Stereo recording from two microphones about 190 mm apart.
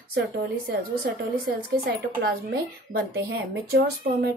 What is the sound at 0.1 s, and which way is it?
Speech, 60° right (ahead or behind).